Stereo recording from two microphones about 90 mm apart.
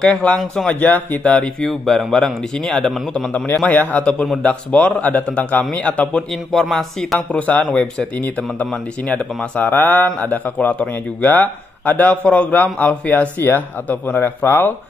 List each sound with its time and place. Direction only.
0.0 s a man's voice: 15° left (ahead or behind)
3.4 s speech: 20° left (ahead or behind)
7.2 s a man's voice: 15° left (ahead or behind)